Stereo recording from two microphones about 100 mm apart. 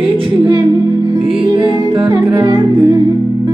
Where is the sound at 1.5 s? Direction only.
45° right (ahead or behind).